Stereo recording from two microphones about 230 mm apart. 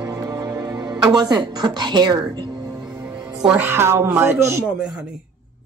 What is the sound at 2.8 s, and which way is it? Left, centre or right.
Music, centre.